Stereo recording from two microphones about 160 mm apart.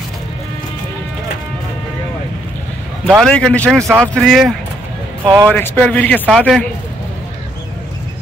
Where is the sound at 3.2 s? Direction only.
5° left (ahead or behind).